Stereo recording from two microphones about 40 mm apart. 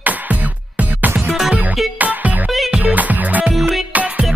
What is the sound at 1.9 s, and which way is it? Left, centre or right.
Music, right.